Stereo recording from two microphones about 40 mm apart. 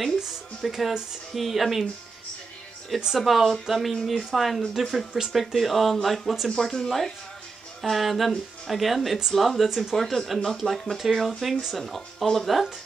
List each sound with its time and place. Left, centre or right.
0.6 s speech: centre
3.2 s speech: centre
6.5 s speech: centre